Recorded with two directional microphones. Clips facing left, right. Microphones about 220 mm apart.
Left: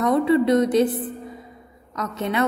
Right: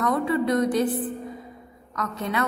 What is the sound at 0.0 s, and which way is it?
Speech, 25° left (ahead or behind).